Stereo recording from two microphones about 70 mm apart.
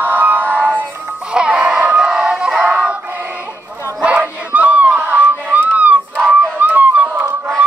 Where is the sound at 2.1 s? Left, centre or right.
Centre.